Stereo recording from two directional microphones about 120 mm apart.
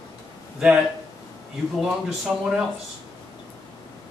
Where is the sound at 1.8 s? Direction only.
5° right (ahead or behind).